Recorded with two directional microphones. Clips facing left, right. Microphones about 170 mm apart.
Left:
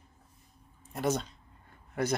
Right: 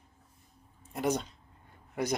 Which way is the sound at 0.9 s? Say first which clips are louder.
Even; 10° right (ahead or behind).